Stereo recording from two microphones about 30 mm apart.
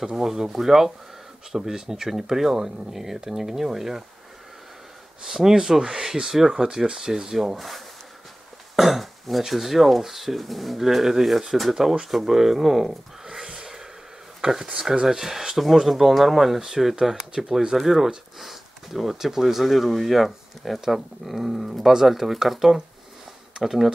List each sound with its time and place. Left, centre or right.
0.0 s speech: centre
5.2 s speech: centre
7.5 s speech: centre
8.7 s throat clearing: centre
9.5 s speech: centre; by 13.7 s right
14.4 s speech: right
15.0 s speech: centre
19.1 s speech: centre
19.4 s speech: centre